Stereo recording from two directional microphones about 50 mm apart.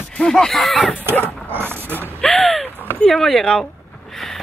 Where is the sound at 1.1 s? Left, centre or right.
Left.